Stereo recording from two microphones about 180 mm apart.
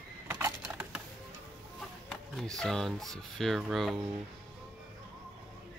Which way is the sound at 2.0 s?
5° left (ahead or behind).